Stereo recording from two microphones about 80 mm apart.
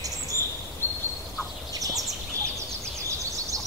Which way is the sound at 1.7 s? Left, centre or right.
Right.